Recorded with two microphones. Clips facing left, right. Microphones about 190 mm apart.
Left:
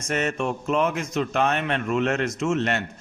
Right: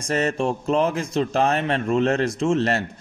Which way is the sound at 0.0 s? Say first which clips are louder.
Right 3 dB; 35° right (ahead or behind).